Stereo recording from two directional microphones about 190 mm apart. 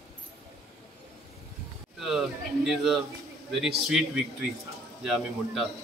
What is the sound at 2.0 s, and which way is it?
A man's voice, centre (ahead or behind).